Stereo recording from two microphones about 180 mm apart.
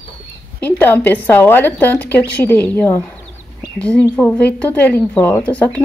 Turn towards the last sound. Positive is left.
turn(degrees=10)  # may be behind; listen again after turning